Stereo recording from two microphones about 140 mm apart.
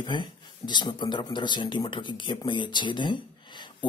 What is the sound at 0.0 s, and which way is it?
Speech, 35° left (ahead or behind).